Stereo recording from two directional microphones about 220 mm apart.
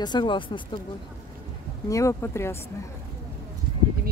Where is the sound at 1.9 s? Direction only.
15° left (ahead or behind).